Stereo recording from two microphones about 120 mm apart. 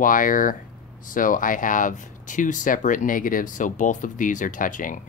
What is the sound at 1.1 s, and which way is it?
Speech, 90° left.